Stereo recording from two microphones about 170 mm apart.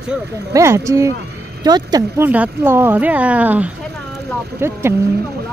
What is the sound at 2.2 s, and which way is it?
Speech, 10° right (ahead or behind).